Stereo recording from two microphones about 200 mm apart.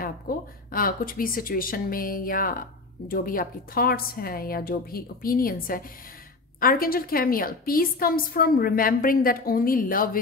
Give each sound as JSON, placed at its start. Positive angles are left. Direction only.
{"t": 0.3, "sound": "a woman's voice", "side_deg": 45}